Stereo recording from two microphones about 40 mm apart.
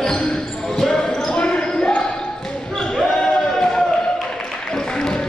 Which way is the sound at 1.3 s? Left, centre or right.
Left.